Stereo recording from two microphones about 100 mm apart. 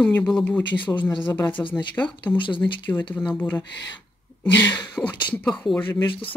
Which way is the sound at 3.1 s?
15° left (ahead or behind).